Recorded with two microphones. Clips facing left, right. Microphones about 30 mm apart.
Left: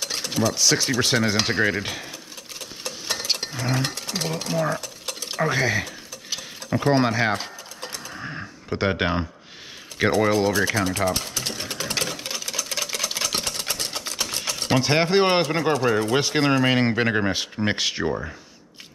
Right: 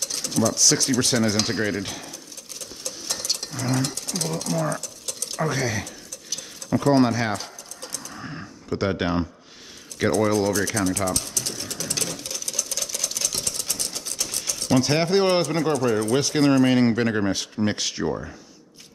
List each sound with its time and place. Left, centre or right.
0.0 s speech: left
2.8 s a sound: left
9.9 s typing: left
14.8 s speech: left